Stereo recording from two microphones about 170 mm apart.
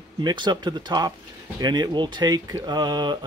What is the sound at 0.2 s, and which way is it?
Speech, 25° right (ahead or behind).